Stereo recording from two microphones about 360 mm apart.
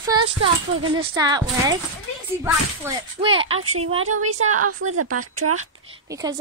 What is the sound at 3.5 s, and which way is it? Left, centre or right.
A woman's voice, right.